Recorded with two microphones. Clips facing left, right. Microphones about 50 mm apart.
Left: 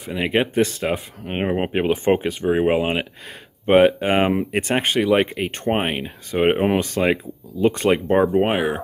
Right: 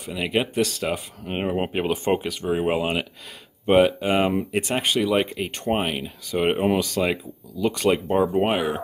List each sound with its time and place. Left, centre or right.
0.0 s speech: left
3.6 s speech: left
8.4 s speech: centre